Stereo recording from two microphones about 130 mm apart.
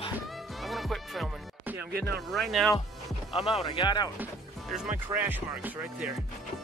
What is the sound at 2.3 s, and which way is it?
Music, centre (ahead or behind).